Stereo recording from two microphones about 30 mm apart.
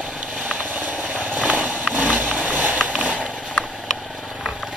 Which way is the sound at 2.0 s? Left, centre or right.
Right.